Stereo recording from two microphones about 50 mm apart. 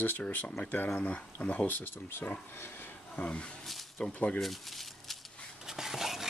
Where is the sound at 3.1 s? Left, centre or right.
Left.